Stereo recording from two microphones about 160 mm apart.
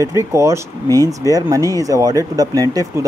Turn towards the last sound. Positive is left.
turn(degrees=-20)  # may be behind; listen again after turning